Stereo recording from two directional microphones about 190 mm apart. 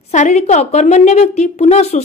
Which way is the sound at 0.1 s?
40° left (ahead or behind).